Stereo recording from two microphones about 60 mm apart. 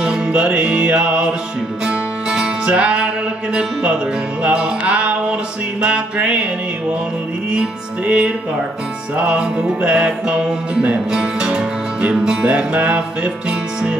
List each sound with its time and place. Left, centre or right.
0.0 s music: centre
4.4 s music: centre
7.5 s music: centre